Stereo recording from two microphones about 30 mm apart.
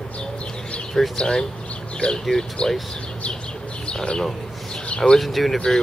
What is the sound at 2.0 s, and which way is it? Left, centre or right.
Speech, left.